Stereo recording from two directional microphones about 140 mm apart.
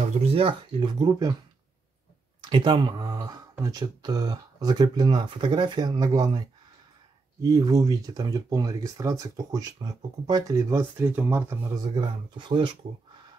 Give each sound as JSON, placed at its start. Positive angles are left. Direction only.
{"t": 0.2, "sound": "speech", "side_deg": -40}
{"t": 2.4, "sound": "speech", "side_deg": -30}
{"t": 7.4, "sound": "speech", "side_deg": -25}
{"t": 11.7, "sound": "speech", "side_deg": -30}